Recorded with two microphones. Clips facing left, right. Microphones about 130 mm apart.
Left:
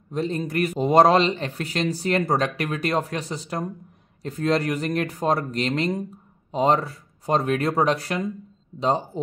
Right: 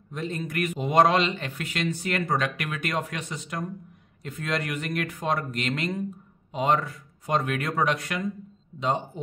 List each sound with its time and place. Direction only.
0.1 s a man's voice: 35° left (ahead or behind)